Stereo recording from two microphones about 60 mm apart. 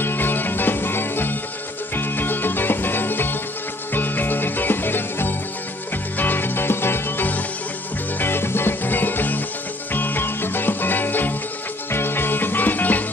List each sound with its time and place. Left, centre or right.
0.0 s music: left